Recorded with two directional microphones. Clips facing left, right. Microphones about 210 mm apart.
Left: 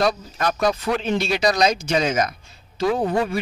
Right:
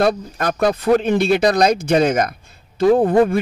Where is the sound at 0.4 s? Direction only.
55° right (ahead or behind).